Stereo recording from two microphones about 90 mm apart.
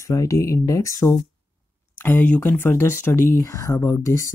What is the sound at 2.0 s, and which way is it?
Speech, 20° left (ahead or behind).